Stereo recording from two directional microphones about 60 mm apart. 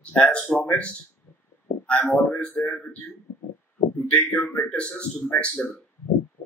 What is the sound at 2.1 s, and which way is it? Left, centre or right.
Speech, left.